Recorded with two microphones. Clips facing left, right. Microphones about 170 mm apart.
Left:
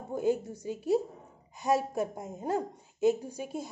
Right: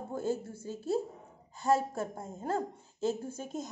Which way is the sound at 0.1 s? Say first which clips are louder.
Left 5 dB; 15° left (ahead or behind).